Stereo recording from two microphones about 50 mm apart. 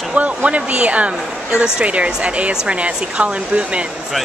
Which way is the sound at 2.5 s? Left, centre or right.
Centre.